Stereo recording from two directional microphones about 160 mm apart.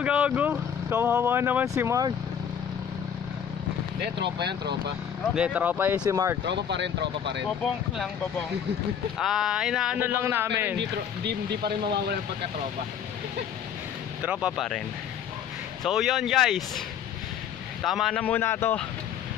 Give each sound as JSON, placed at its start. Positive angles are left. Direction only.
{"t": 0.0, "sound": "speech", "side_deg": -10}
{"t": 4.0, "sound": "speech", "side_deg": -90}
{"t": 5.3, "sound": "speech", "side_deg": -5}
{"t": 6.4, "sound": "speech", "side_deg": -90}
{"t": 9.2, "sound": "speech", "side_deg": 0}
{"t": 10.8, "sound": "speech", "side_deg": -90}
{"t": 14.2, "sound": "speech", "side_deg": -5}
{"t": 15.8, "sound": "speech", "side_deg": 0}
{"t": 17.8, "sound": "speech", "side_deg": 0}